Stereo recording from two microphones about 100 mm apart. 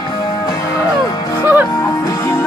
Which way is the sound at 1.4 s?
20° right (ahead or behind).